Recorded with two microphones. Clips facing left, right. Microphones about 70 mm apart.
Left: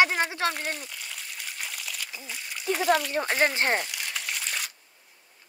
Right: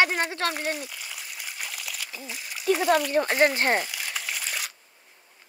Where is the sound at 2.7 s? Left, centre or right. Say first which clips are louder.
Right 2 dB; centre.